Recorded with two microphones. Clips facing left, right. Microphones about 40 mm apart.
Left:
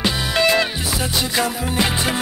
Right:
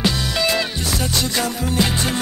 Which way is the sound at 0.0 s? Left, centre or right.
Centre.